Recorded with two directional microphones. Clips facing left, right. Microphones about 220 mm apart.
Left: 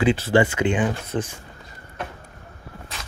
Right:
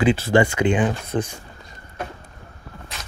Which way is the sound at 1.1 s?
50° right (ahead or behind).